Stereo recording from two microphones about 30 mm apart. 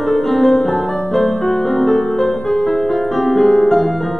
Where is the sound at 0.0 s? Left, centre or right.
Centre.